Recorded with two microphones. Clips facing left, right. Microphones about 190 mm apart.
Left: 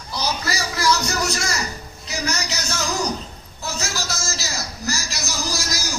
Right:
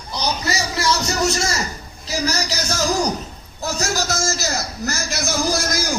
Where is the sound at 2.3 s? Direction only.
40° right (ahead or behind).